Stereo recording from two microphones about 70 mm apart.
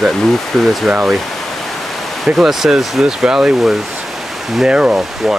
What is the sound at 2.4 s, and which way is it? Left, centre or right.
Speech, centre.